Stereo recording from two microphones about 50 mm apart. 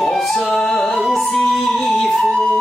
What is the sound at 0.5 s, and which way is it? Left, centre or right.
Music, left.